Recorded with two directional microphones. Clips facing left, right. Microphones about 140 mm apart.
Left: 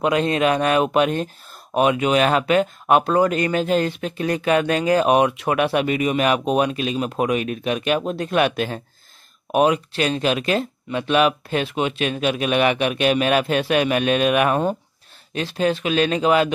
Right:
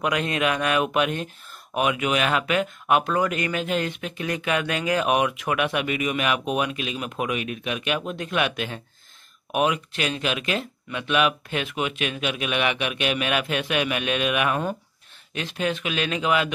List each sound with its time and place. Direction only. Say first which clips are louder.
0.0 s speech: left 5 dB; 30° left (ahead or behind)